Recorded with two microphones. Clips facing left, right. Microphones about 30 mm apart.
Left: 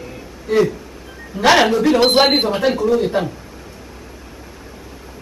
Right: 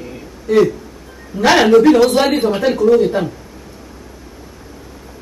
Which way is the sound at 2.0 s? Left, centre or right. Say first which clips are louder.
Even; left.